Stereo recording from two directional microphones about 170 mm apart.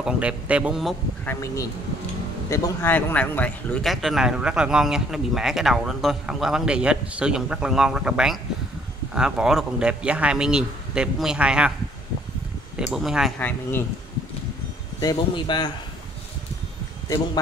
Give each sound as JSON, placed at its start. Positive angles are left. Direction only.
{"t": 0.0, "sound": "speech", "side_deg": -5}
{"t": 1.2, "sound": "speech", "side_deg": 15}
{"t": 12.7, "sound": "speech", "side_deg": 0}
{"t": 13.4, "sound": "speech", "side_deg": 10}
{"t": 15.0, "sound": "speech", "side_deg": 25}